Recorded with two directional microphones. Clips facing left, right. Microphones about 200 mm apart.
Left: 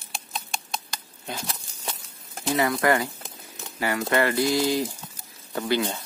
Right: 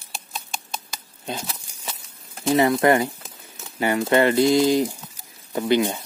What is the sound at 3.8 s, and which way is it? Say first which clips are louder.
Speech: right 5 dB; 20° right (ahead or behind).